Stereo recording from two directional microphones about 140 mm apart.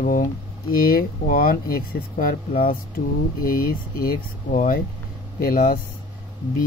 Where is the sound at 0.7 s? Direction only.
90° left.